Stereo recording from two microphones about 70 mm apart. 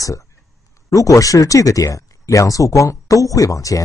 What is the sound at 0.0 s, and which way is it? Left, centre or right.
Speech, left.